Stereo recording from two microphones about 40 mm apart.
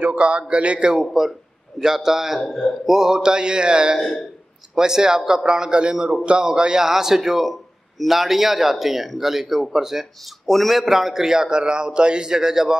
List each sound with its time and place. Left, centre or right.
0.2 s speech: right
1.8 s a man's voice: centre
2.9 s a man's voice: centre
10.4 s a man's voice: centre